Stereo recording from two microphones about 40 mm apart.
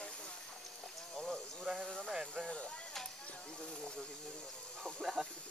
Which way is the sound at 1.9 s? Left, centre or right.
Centre.